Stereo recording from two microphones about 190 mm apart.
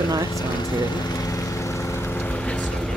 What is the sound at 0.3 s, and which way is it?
Lawn mower, 20° left (ahead or behind).